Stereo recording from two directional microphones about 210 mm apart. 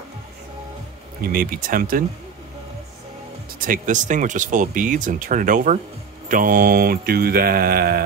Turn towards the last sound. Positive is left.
turn(degrees=-45)  # may be behind; listen again after turning